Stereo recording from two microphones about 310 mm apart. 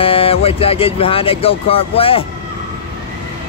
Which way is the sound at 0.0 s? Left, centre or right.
Centre.